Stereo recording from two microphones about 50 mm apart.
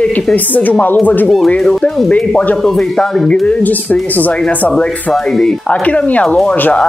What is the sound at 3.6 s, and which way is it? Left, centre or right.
Speech, left.